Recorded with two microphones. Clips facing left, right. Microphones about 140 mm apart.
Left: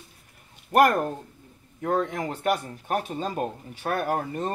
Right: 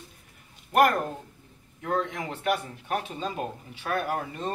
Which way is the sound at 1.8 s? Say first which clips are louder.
Left 3 dB; 45° left (ahead or behind).